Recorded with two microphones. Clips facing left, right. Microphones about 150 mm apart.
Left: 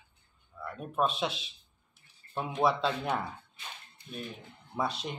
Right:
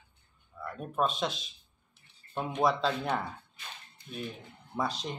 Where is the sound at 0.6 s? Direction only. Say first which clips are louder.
Even; centre (ahead or behind).